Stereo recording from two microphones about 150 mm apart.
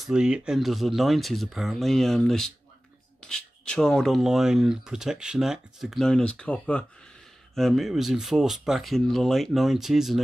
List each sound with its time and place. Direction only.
0.0 s speech: 5° right (ahead or behind)